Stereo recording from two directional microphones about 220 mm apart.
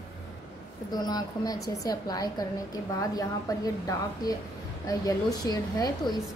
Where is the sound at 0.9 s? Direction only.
20° left (ahead or behind).